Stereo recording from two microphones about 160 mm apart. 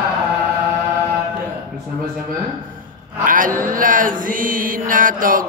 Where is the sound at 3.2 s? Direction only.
55° right (ahead or behind).